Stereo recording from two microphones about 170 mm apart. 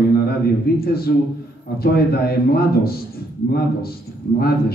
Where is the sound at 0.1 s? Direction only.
65° left (ahead or behind).